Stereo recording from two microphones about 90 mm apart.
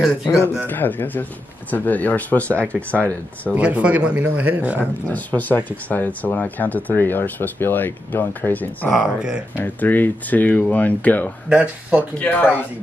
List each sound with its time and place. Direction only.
0.7 s speech: 20° left (ahead or behind)
3.5 s speech: 15° right (ahead or behind)
4.7 s speech: 15° left (ahead or behind)
8.9 s speech: 5° right (ahead or behind)
9.6 s speech: 20° left (ahead or behind)
11.4 s speech: 15° right (ahead or behind)
12.2 s speech: 20° left (ahead or behind)